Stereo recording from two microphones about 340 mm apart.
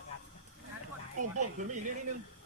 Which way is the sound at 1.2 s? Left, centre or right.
Right.